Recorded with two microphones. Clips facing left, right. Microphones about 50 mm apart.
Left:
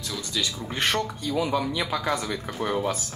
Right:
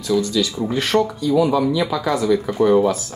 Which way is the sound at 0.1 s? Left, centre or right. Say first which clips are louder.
Right 19 dB; centre.